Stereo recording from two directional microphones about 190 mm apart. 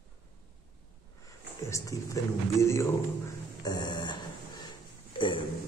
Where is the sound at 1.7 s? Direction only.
15° left (ahead or behind).